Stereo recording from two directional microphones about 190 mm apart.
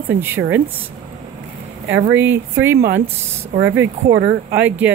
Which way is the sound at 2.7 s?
60° right (ahead or behind).